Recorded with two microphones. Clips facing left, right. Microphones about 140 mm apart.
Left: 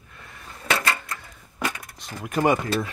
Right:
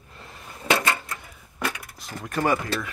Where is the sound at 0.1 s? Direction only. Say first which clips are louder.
Right 1 dB; 25° right (ahead or behind).